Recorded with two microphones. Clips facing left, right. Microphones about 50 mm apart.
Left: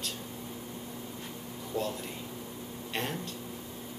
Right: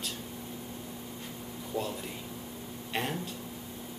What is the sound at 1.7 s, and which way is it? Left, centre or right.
Speech, centre.